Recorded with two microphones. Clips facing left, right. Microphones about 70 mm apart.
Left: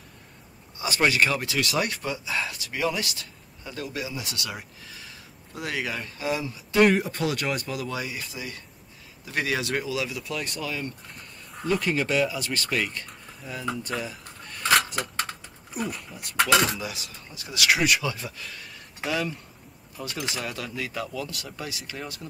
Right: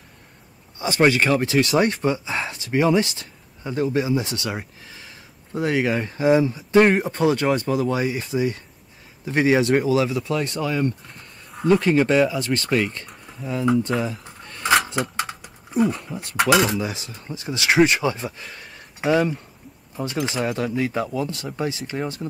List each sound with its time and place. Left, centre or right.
0.7 s speech: right
13.9 s speech: centre
14.2 s a sound: right
15.7 s speech: right
16.3 s speech: centre
16.8 s speech: right
18.4 s a sound: right
20.0 s speech: right